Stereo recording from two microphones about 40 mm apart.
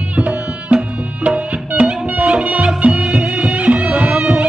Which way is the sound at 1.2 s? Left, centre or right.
Right.